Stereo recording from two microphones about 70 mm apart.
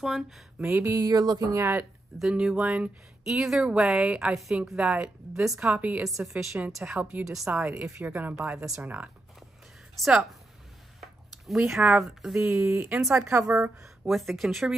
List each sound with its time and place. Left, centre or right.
0.6 s speech: right
1.0 s speech: right
1.6 s a woman's voice: right
2.1 s speech: centre
6.0 s speech: centre
6.8 s speech: right
7.2 s speech: centre
8.0 s speech: right
9.9 s speech: centre
11.0 s a sound: centre
11.9 s speech: centre
12.5 s a woman's voice: right
14.0 s speech: centre